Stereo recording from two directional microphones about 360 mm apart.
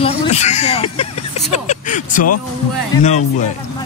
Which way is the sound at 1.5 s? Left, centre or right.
Centre.